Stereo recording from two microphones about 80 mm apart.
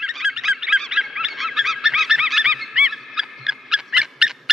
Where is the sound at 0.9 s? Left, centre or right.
Centre.